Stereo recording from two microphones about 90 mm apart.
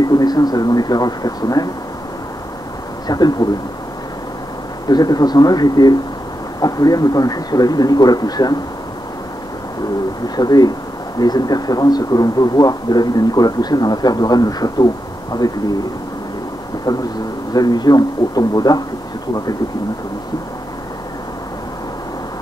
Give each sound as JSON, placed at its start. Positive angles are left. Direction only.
{"t": 0.2, "sound": "a man's voice", "side_deg": 45}
{"t": 3.1, "sound": "a man's voice", "side_deg": 50}
{"t": 4.8, "sound": "a man's voice", "side_deg": 50}
{"t": 10.2, "sound": "a man's voice", "side_deg": 45}
{"t": 17.6, "sound": "a man's voice", "side_deg": 50}